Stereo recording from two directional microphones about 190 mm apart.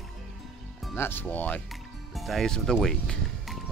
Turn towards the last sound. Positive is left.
turn(degrees=0)  # may be behind; listen again after turning